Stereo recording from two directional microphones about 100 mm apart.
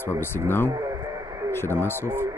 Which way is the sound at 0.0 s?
20° left (ahead or behind).